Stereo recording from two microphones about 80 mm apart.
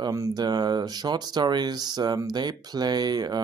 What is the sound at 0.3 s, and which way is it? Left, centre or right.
Speech, right.